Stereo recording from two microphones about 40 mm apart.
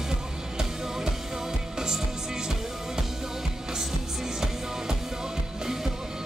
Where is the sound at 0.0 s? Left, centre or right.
Centre.